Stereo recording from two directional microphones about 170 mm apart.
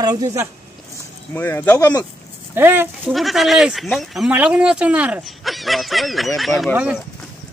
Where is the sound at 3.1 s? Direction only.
Centre (ahead or behind).